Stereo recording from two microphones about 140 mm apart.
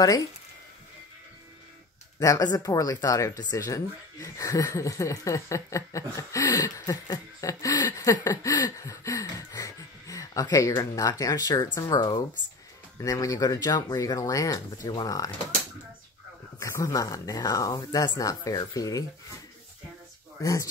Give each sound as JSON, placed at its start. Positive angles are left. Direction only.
{"t": 2.1, "sound": "speech", "side_deg": 25}
{"t": 16.5, "sound": "speech", "side_deg": 20}